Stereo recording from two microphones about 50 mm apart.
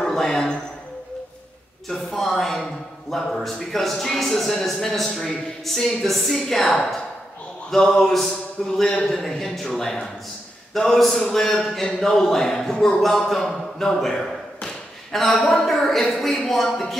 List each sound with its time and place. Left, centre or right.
0.0 s a man's voice: centre
1.9 s a man's voice: centre